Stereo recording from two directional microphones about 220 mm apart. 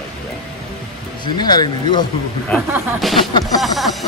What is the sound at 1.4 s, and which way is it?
Speech, 20° left (ahead or behind).